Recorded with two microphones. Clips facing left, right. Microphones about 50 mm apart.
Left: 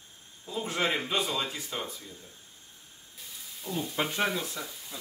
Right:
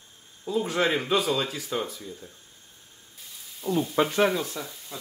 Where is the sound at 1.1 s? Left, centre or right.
Right.